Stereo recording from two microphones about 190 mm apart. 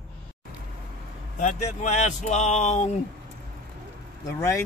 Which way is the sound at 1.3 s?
40° left (ahead or behind).